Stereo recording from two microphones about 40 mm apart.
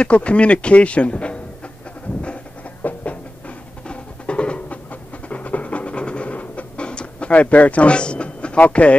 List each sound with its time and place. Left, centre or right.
0.0 s speech: left
2.8 s music: left
5.3 s a sound: left
8.6 s speech: left